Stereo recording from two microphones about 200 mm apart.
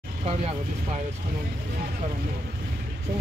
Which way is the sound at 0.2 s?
30° right (ahead or behind).